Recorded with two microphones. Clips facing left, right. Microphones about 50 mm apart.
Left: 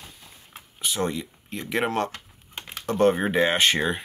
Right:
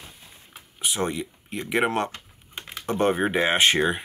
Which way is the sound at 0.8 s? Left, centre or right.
Right.